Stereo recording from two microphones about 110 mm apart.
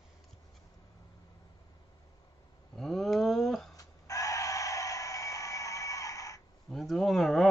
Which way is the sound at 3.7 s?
30° left (ahead or behind).